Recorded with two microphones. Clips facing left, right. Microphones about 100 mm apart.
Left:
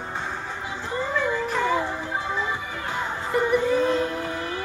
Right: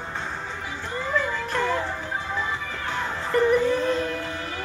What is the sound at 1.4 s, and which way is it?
Music, 5° left (ahead or behind).